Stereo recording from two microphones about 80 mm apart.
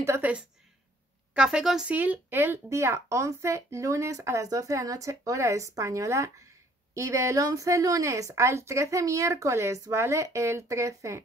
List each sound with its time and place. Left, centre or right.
1.3 s a woman's voice: centre
1.9 s speech: right